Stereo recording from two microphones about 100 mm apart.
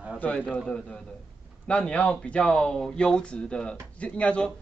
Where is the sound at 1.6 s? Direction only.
10° left (ahead or behind).